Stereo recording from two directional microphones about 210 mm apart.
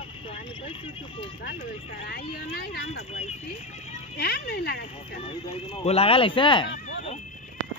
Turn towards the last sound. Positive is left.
turn(degrees=25)  # may be behind; listen again after turning